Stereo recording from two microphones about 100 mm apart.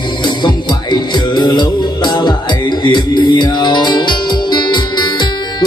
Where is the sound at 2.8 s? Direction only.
50° left (ahead or behind).